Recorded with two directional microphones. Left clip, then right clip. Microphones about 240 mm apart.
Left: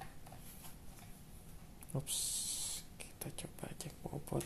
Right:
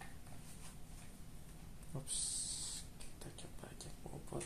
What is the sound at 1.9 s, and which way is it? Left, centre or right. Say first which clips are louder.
Speech: left 6 dB; left.